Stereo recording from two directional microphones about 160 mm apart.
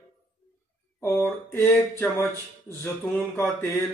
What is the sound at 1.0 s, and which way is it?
Speech, 15° left (ahead or behind).